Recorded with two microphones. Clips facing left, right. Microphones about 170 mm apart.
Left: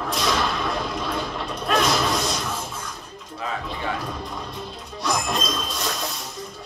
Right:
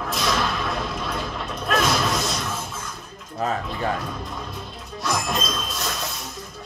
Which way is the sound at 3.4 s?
45° right (ahead or behind).